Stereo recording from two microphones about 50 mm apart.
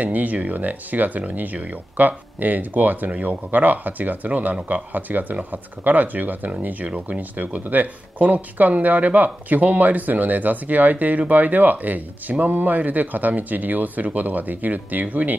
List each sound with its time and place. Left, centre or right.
0.0 s speech: right